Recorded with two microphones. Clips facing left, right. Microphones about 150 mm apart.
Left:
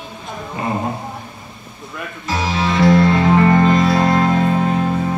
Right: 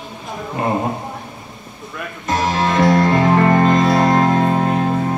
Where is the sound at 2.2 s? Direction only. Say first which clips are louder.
Right 2 dB; 50° right (ahead or behind).